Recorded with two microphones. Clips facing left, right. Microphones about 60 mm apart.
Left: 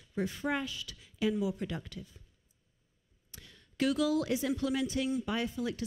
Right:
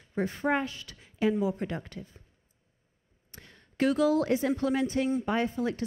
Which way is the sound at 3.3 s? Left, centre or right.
Right.